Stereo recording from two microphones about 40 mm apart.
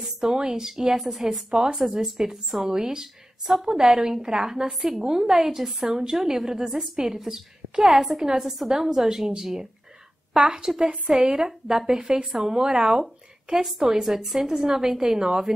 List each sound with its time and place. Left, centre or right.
0.2 s a woman's voice: centre